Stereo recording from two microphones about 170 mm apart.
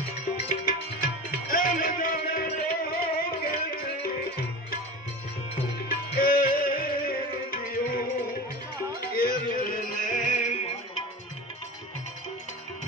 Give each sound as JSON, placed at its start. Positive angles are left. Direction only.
{"t": 0.5, "sound": "music", "side_deg": 55}
{"t": 5.9, "sound": "music", "side_deg": 60}